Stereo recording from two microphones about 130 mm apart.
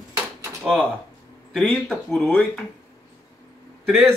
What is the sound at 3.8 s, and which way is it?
Speech, centre (ahead or behind).